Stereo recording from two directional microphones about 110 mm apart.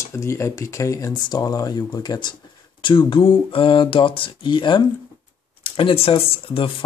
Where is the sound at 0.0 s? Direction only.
25° left (ahead or behind).